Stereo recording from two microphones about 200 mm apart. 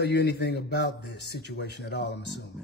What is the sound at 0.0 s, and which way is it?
Speech, 55° left (ahead or behind).